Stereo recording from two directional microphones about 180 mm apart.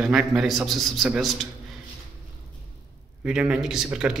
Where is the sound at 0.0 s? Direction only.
Centre (ahead or behind).